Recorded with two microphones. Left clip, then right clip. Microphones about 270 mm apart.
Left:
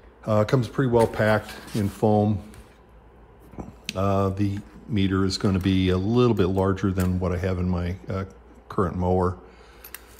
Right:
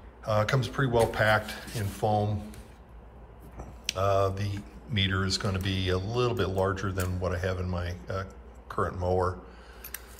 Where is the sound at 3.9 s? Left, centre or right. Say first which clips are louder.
Left 1 dB; left.